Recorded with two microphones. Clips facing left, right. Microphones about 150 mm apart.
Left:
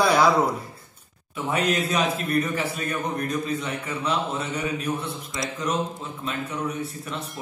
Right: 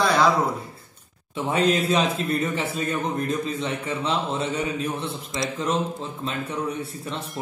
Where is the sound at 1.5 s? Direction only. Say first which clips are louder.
Right 3 dB; 30° right (ahead or behind).